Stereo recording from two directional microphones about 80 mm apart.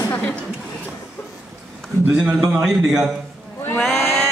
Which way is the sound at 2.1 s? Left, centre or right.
Centre.